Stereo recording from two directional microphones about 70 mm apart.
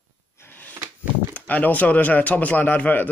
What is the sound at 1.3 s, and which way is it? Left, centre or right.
Speech, left.